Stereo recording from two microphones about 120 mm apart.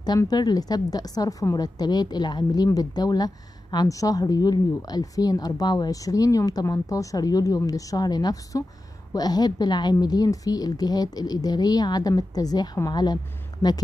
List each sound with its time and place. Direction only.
0.0 s a woman's voice: 35° left (ahead or behind)